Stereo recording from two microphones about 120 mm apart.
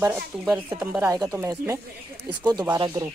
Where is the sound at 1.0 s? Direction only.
30° right (ahead or behind).